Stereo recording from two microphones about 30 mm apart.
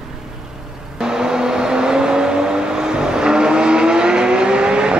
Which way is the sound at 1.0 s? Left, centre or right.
Right.